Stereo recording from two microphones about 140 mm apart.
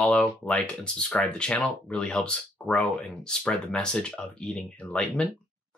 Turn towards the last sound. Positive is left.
turn(degrees=10)  # may be behind; listen again after turning